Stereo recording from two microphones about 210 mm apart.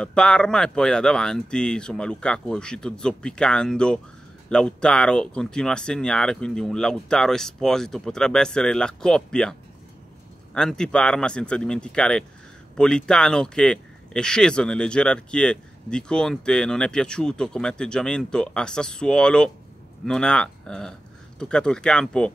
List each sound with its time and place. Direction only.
0.0 s speech: 5° left (ahead or behind)